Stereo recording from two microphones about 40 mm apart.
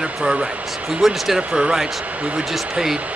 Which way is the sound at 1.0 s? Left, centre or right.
Centre.